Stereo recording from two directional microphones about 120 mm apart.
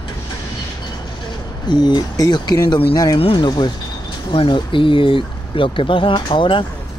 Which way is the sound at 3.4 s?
35° left (ahead or behind).